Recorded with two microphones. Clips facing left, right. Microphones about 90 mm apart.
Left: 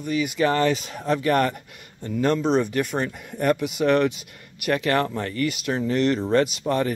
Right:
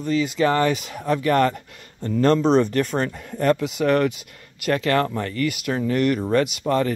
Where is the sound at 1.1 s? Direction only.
25° left (ahead or behind).